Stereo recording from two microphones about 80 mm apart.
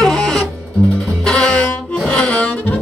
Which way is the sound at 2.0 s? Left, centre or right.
Centre.